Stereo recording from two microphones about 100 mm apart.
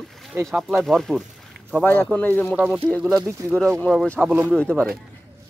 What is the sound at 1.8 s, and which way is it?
Speech, 20° left (ahead or behind).